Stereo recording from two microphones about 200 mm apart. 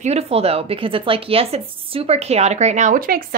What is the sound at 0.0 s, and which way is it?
Speech, 30° right (ahead or behind).